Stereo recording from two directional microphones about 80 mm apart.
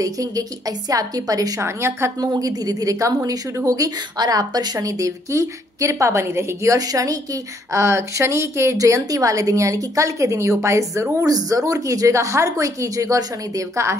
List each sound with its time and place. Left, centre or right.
0.0 s speech: right
1.6 s a woman's voice: right
2.1 s a woman's voice: right